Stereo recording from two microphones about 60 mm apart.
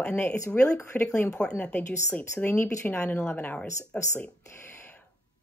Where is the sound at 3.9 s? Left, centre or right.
Left.